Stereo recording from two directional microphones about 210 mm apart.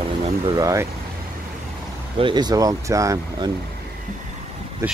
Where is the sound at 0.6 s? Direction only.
15° right (ahead or behind).